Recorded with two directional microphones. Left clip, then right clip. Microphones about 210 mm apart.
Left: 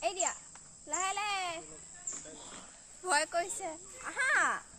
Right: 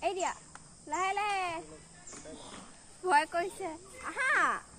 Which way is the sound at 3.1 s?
50° left (ahead or behind).